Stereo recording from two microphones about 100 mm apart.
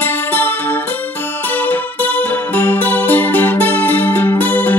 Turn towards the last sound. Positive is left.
turn(degrees=20)  # may be behind; listen again after turning